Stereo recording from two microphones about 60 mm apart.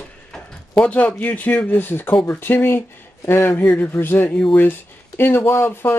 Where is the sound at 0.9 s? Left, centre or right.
Left.